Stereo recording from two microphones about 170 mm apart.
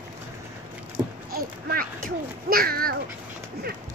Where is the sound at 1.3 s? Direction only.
60° right (ahead or behind).